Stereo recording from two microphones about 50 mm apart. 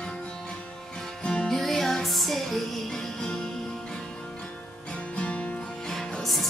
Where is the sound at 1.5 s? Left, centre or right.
Centre.